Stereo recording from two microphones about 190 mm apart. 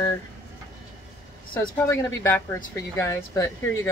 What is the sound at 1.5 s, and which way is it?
Speech, 10° left (ahead or behind).